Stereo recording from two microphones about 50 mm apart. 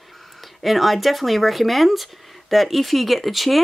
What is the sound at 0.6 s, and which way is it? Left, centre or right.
Speech, centre.